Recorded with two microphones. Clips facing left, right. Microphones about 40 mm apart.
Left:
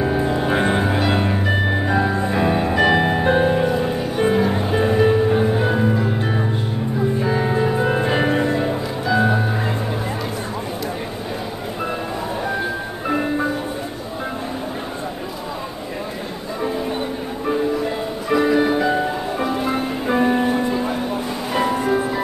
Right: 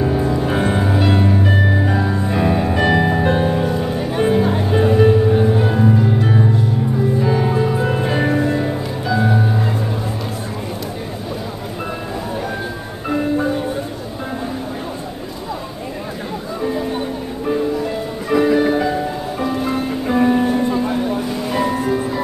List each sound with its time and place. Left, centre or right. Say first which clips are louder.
0.0 s music: right 2 dB; centre
0.5 s music: even; left
0.8 s music: right 2 dB; centre
4.2 s music: right 2 dB; centre
13.1 s music: right 2 dB; centre
18.3 s music: right 2 dB; centre
18.9 s music: left 1 dB; centre